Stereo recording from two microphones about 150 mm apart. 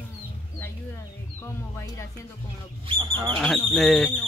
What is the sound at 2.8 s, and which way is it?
Cattle, 30° right (ahead or behind).